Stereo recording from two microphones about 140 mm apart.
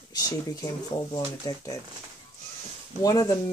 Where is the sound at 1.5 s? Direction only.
25° left (ahead or behind).